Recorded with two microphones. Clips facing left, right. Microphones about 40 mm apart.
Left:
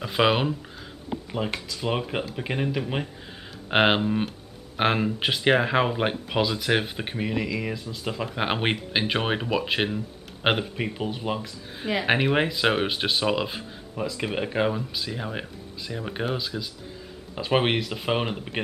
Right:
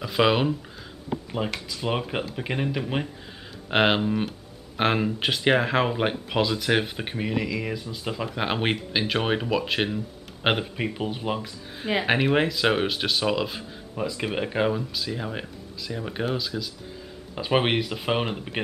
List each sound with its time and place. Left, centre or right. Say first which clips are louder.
0.0 s speech: right 1 dB; centre
1.7 s speech: even; centre
3.7 s speech: left 1 dB; centre
13.9 s speech: right 1 dB; centre
16.3 s speech: right 1 dB; centre
17.4 s speech: even; centre